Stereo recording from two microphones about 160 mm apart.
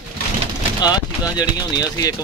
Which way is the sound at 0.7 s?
25° left (ahead or behind).